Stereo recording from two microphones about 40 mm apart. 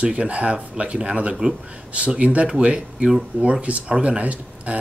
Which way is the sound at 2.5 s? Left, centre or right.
Right.